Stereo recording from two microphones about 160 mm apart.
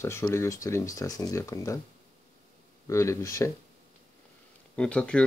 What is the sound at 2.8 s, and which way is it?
Speech, 20° left (ahead or behind).